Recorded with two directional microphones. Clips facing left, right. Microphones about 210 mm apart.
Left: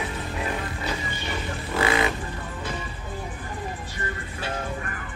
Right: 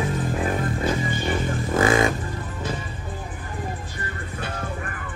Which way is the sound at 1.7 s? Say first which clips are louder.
Right 4 dB; 45° right (ahead or behind).